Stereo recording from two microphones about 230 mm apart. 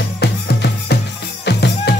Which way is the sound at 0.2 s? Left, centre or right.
Left.